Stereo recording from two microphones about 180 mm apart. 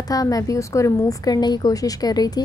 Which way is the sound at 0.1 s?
20° left (ahead or behind).